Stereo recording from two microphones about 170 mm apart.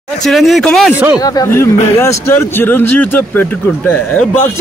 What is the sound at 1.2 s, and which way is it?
Speech, 20° left (ahead or behind).